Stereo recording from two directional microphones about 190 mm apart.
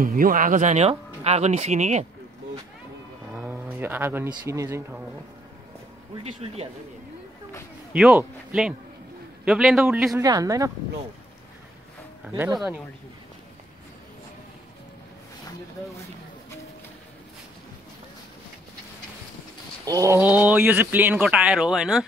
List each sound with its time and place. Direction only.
0.0 s speech: 45° right (ahead or behind)
3.3 s cattle: 10° right (ahead or behind)
4.3 s speech: 15° right (ahead or behind)
7.9 s a man's voice: 5° right (ahead or behind)
9.4 s a man's voice: 5° right (ahead or behind)
10.2 s speech: 20° right (ahead or behind)
19.8 s a sound: 20° right (ahead or behind)
20.2 s speech: 10° right (ahead or behind)